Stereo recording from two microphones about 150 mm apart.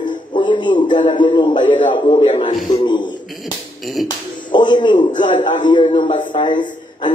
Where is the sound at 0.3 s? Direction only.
30° left (ahead or behind).